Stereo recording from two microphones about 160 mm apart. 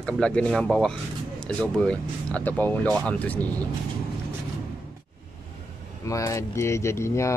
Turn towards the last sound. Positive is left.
turn(degrees=15)  # may be behind; listen again after turning